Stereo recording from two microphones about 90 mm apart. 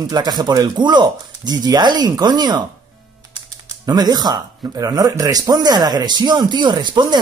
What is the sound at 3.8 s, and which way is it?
Speech, 50° right (ahead or behind).